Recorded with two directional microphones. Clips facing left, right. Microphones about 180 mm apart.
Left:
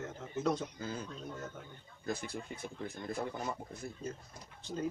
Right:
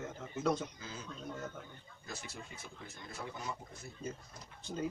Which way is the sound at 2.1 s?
55° left (ahead or behind).